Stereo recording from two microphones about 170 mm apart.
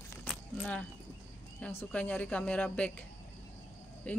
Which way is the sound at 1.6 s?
10° left (ahead or behind).